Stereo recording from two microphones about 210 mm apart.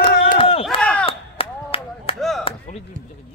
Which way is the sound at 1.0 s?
25° left (ahead or behind).